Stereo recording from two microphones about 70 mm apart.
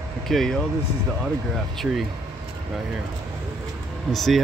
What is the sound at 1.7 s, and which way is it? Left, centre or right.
Speech, centre.